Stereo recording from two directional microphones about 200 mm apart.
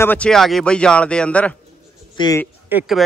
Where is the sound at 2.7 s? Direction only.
5° right (ahead or behind).